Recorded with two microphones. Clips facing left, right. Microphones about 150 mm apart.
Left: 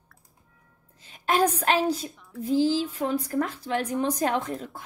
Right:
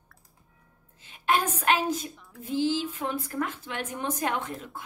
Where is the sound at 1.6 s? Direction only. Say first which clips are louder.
Left 2 dB; 35° left (ahead or behind).